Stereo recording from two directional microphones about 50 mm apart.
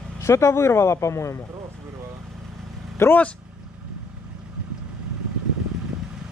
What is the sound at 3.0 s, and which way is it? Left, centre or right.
Speech, left.